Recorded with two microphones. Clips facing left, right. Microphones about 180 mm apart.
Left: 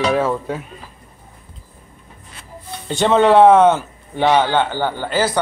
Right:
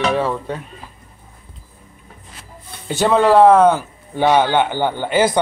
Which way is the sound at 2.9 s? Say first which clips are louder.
Left 1 dB; 5° right (ahead or behind).